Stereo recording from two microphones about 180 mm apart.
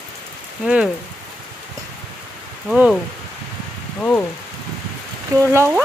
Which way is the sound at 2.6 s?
5° right (ahead or behind).